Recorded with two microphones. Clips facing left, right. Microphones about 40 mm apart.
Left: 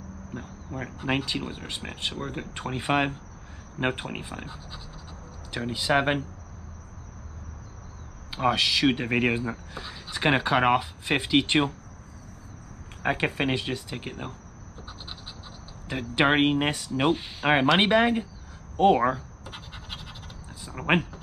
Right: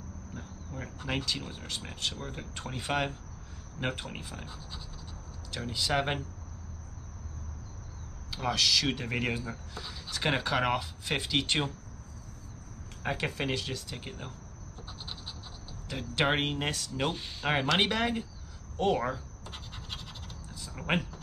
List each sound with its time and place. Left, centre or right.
0.3 s speech: left
8.3 s speech: left
13.0 s speech: left
15.9 s speech: left
19.4 s scratch: centre